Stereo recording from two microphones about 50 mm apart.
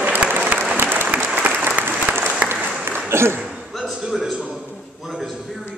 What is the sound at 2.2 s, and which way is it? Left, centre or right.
Applause, right.